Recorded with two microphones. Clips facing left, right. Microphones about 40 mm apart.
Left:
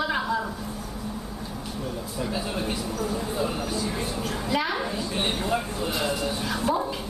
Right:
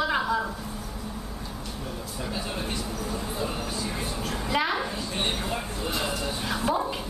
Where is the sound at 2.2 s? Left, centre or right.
Centre.